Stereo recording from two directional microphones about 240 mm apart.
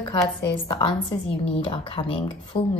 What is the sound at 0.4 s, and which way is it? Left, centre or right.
A woman's voice, centre.